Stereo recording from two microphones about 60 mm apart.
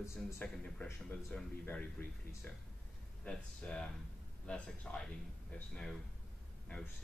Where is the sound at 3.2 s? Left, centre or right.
Centre.